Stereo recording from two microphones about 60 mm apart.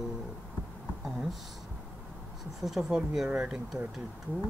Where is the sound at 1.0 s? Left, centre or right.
Centre.